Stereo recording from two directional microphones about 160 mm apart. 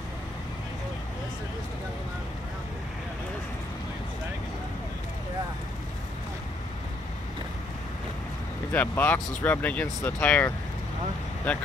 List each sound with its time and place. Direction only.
8.7 s speech: 10° left (ahead or behind)